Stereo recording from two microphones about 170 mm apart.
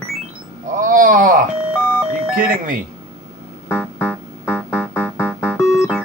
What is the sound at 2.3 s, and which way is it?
Speech, 55° right (ahead or behind).